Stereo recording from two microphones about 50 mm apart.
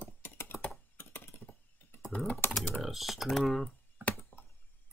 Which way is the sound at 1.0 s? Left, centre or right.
Left.